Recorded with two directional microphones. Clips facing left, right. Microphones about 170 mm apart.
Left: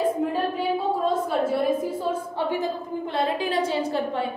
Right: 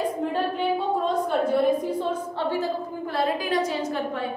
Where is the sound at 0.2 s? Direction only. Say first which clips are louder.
Even; 5° left (ahead or behind); by 4.2 s 30° left (ahead or behind).